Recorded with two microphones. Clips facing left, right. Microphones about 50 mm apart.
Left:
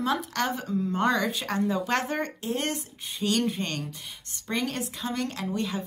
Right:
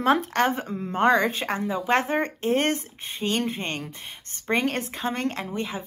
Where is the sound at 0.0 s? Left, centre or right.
Right.